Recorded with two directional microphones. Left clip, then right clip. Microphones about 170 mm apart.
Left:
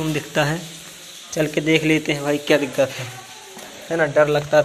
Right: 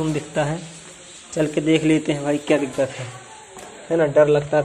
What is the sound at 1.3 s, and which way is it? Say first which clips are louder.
A man's voice: even; 5° right (ahead or behind).